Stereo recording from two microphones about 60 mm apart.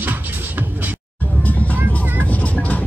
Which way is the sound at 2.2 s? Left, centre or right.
Left.